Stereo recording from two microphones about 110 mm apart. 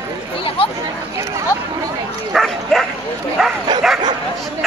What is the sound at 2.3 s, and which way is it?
Bow-wow, 5° left (ahead or behind).